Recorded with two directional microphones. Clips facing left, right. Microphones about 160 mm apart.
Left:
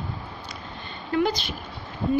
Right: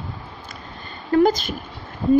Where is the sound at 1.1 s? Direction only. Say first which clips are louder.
Right 7 dB; 45° right (ahead or behind).